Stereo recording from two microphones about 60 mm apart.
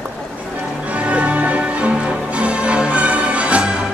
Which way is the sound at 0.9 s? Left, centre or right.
Right.